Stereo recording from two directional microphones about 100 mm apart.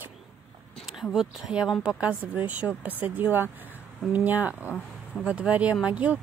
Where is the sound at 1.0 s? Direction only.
5° right (ahead or behind).